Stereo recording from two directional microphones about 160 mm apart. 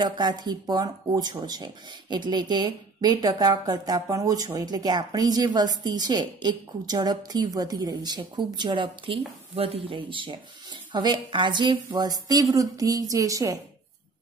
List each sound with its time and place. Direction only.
0.0 s speech: 25° right (ahead or behind)